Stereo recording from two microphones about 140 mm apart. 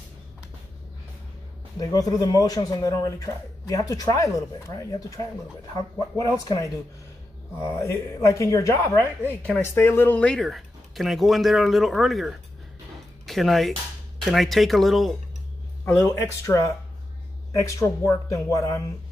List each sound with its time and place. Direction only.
1.8 s speech: 25° left (ahead or behind)
6.4 s speech: 25° left (ahead or behind)
7.8 s speech: 20° left (ahead or behind); by 15.1 s centre (ahead or behind)
15.8 s speech: 20° left (ahead or behind)